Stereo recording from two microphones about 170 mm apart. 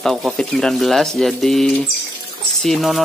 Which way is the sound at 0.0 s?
Centre (ahead or behind).